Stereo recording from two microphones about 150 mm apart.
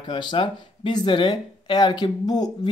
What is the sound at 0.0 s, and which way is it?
Speech, 30° left (ahead or behind).